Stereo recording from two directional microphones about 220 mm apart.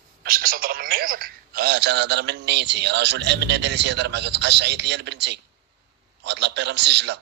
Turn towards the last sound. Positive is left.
turn(degrees=-50)  # may be behind; listen again after turning